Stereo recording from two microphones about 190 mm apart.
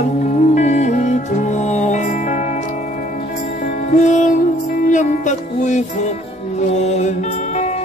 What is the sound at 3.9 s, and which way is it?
Music, 40° left (ahead or behind).